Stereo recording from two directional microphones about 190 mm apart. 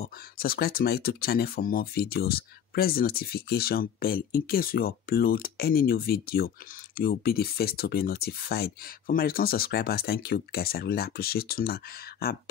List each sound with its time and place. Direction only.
0.0 s speech: 55° left (ahead or behind)